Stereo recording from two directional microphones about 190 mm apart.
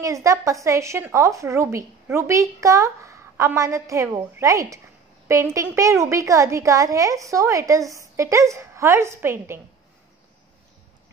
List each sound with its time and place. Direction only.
0.0 s a woman's voice: 15° right (ahead or behind)